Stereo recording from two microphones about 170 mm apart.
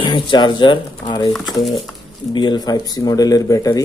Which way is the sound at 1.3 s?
Centre (ahead or behind).